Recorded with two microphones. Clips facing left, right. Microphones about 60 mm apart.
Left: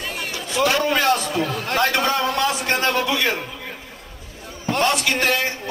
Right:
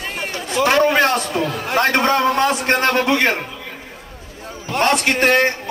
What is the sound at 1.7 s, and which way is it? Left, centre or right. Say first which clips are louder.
A man's voice: right 4 dB; right.